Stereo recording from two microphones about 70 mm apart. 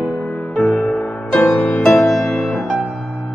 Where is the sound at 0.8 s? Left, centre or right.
Centre.